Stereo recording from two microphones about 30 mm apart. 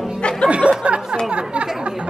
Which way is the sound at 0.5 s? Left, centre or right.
Right.